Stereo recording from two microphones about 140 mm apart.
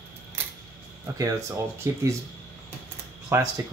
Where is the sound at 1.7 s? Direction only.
15° right (ahead or behind).